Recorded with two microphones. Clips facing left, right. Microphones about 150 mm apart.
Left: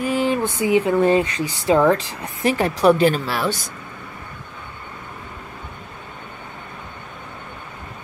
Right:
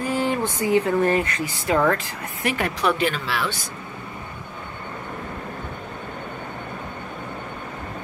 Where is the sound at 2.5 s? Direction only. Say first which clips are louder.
Left 7 dB; 35° left (ahead or behind).